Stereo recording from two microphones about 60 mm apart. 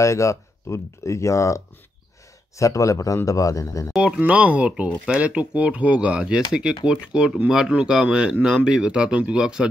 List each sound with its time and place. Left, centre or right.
0.0 s speech: left
4.0 s speech: right